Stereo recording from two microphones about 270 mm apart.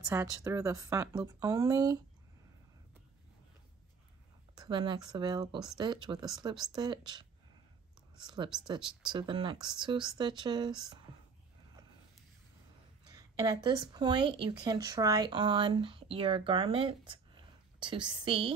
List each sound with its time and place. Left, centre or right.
0.0 s speech: centre
4.6 s speech: centre
8.4 s speech: centre
13.1 s a woman's voice: centre